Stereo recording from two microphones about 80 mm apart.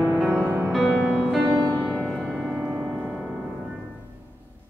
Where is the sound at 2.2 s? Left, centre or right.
Centre.